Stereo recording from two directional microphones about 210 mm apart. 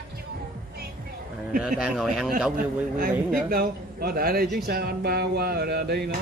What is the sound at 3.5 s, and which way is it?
Speech, 45° right (ahead or behind).